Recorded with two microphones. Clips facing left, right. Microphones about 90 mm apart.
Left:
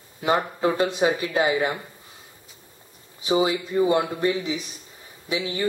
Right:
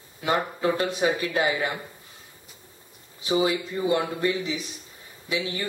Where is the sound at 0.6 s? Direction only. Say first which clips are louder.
Left 3 dB; 25° left (ahead or behind).